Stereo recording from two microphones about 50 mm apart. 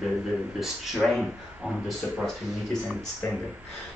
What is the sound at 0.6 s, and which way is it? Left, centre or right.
Speech, centre.